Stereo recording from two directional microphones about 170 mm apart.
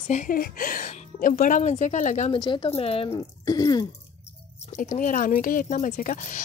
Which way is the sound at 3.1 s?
20° left (ahead or behind).